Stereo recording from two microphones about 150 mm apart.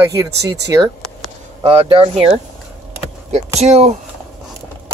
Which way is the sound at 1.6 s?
40° right (ahead or behind).